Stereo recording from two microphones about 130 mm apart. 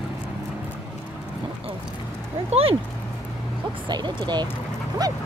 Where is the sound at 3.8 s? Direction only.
35° right (ahead or behind).